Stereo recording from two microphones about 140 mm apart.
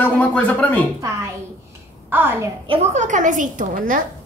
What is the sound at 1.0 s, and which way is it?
A woman's voice, 20° right (ahead or behind).